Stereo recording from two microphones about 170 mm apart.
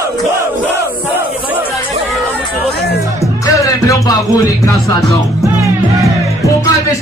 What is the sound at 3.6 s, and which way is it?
Music, 20° left (ahead or behind).